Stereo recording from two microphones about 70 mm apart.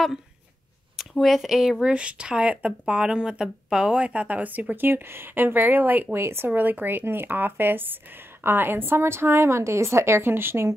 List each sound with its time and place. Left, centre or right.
0.9 s a woman's voice: centre; by 6.5 s right
6.5 s a woman's voice: right